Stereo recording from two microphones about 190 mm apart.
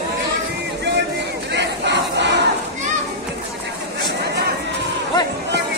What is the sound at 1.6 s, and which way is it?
Crowd, 65° right (ahead or behind).